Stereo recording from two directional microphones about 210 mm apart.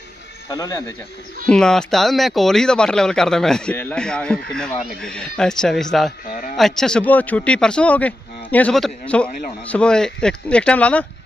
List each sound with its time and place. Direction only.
0.5 s a man's voice: 15° left (ahead or behind)
1.5 s speech: 5° left (ahead or behind)